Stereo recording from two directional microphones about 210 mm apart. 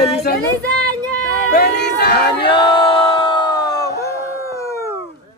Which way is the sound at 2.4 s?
25° left (ahead or behind).